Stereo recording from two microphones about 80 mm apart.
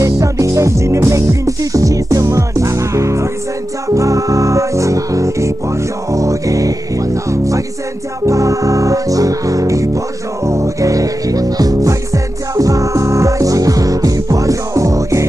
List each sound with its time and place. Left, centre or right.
0.0 s music: right